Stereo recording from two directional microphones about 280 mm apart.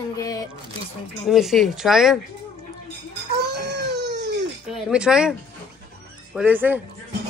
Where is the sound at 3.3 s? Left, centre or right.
Right.